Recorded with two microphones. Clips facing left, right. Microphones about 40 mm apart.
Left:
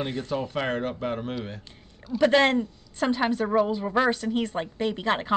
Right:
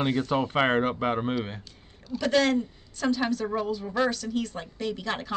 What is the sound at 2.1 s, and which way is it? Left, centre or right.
A woman's voice, left.